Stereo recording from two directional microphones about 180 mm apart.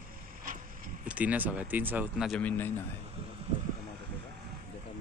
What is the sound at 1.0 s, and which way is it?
Speech, 10° right (ahead or behind).